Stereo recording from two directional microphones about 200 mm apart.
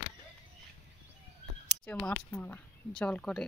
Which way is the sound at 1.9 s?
5° left (ahead or behind).